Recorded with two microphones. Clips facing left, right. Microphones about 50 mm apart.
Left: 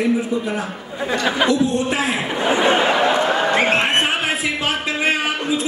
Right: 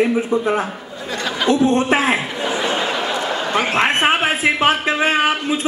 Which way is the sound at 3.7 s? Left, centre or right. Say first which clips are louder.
Right 2 dB; right.